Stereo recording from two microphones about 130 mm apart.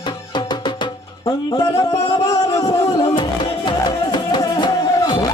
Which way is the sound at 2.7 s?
35° left (ahead or behind).